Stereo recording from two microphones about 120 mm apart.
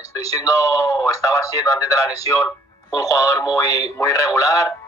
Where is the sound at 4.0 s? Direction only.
25° left (ahead or behind).